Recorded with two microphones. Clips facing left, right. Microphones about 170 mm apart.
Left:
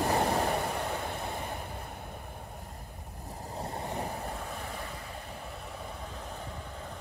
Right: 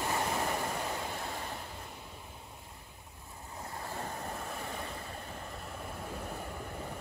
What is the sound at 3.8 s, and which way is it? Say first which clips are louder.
Waves: left 2 dB; 15° left (ahead or behind).